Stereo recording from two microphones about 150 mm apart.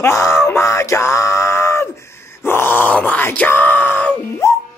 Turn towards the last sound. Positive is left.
turn(degrees=15)  # may be behind; listen again after turning